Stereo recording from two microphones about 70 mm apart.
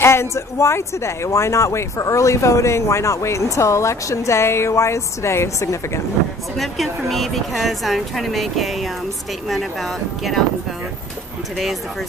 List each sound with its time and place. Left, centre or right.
0.0 s speech: left
6.6 s a woman's voice: centre